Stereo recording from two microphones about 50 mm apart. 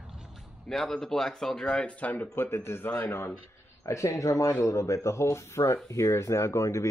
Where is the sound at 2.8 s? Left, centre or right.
Left.